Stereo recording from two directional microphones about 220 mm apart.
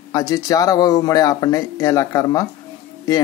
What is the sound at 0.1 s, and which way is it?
Speech, 15° left (ahead or behind).